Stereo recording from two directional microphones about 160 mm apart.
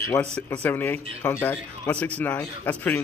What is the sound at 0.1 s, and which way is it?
Speech, 20° left (ahead or behind).